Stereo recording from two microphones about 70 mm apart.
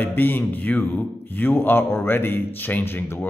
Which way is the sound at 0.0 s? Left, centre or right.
Left.